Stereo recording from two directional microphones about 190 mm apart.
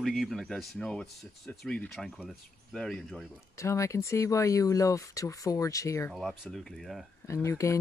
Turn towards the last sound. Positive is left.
turn(degrees=15)  # may be behind; listen again after turning